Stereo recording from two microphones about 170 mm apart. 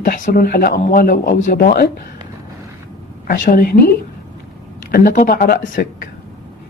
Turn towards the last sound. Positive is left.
turn(degrees=60)  # may be behind; listen again after turning